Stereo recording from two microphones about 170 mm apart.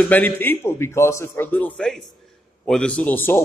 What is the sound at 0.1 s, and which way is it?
A man's voice, 10° left (ahead or behind).